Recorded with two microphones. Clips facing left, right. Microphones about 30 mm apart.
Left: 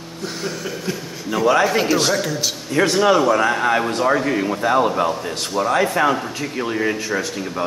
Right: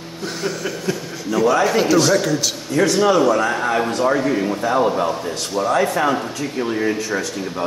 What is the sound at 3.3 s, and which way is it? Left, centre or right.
Speech, left.